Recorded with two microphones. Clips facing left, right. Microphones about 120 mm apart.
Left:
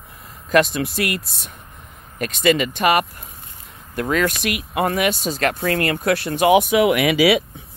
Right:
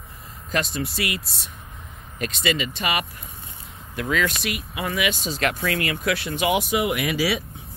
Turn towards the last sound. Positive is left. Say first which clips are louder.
# left 8 dB
turn(degrees=70)  # may be behind; listen again after turning